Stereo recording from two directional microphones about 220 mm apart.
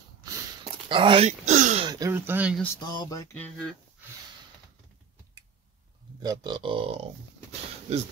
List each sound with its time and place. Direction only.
0.8 s speech: 25° right (ahead or behind)
1.9 s speech: 15° right (ahead or behind)
2.6 s speech: 15° left (ahead or behind)
6.2 s speech: 20° right (ahead or behind)